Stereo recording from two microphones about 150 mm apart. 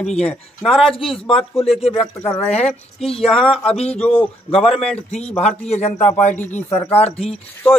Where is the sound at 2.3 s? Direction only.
45° left (ahead or behind).